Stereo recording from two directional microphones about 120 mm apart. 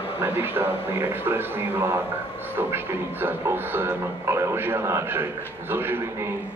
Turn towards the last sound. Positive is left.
turn(degrees=-20)  # may be behind; listen again after turning